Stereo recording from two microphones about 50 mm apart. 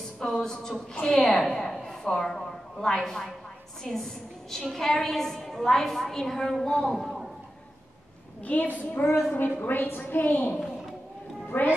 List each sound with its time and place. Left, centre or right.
0.2 s a woman's voice: centre
8.5 s a woman's voice: left